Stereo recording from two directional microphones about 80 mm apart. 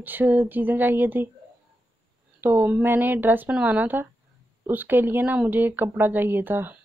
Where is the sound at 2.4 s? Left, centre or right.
Right.